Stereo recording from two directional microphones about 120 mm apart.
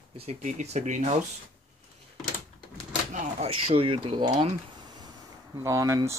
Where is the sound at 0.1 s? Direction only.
55° right (ahead or behind).